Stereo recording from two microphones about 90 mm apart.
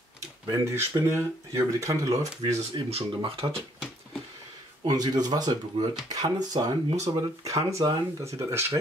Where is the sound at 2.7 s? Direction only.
80° right.